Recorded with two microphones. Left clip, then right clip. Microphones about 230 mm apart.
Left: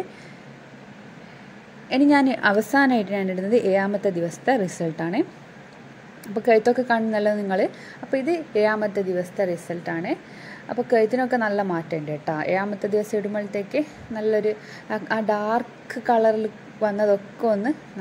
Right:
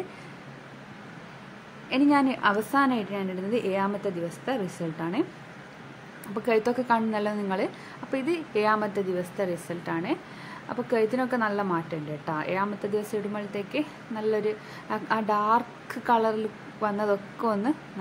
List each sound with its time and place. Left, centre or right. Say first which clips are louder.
1.9 s a woman's voice: left 5 dB; centre
6.4 s a woman's voice: left 7 dB; centre